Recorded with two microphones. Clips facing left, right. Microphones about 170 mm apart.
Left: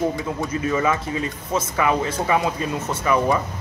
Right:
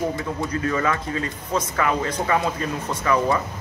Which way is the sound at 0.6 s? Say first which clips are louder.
Left 2 dB; 15° left (ahead or behind).